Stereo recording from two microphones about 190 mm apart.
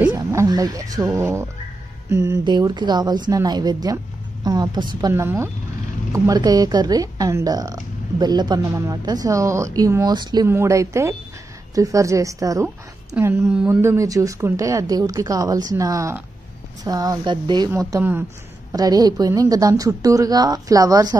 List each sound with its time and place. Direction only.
0.1 s a woman's voice: 15° right (ahead or behind)